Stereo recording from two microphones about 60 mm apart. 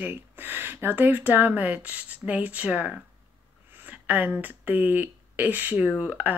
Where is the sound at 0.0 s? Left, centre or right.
Right.